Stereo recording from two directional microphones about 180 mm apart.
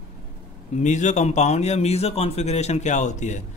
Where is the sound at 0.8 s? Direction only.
40° left (ahead or behind).